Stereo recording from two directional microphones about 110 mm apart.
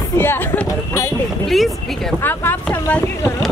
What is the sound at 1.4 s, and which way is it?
Speech, centre (ahead or behind).